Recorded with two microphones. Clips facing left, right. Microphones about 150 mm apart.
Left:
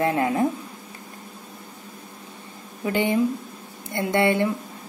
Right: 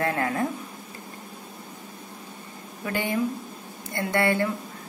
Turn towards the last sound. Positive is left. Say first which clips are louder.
# left 3 dB
turn(degrees=20)  # may be behind; listen again after turning